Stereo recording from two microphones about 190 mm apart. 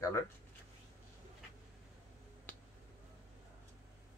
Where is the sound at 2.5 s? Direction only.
10° left (ahead or behind).